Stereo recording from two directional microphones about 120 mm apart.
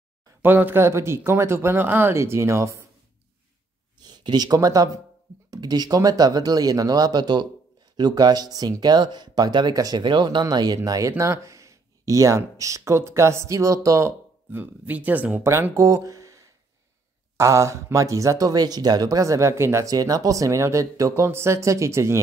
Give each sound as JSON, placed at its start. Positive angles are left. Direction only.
{"t": 0.4, "sound": "speech", "side_deg": -15}
{"t": 4.0, "sound": "speech", "side_deg": -35}
{"t": 15.4, "sound": "speech", "side_deg": -25}